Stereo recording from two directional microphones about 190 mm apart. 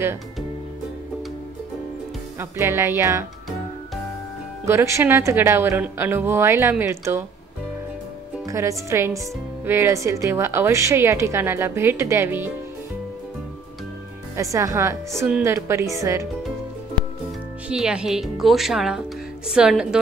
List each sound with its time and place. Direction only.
2.3 s a woman's voice: 15° right (ahead or behind)
4.6 s a woman's voice: 15° right (ahead or behind)
8.5 s a woman's voice: 15° right (ahead or behind)
14.3 s a woman's voice: 15° right (ahead or behind)
17.6 s speech: 5° right (ahead or behind)